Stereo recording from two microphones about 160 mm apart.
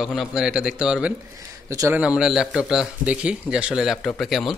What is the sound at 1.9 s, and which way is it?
Speech, 5° right (ahead or behind).